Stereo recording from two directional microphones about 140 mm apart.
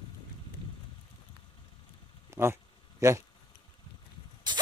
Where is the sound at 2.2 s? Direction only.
20° right (ahead or behind).